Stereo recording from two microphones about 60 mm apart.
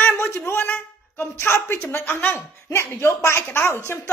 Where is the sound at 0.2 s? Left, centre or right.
Left.